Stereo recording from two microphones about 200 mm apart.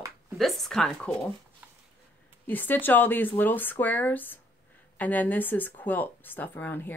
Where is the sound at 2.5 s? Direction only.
10° left (ahead or behind).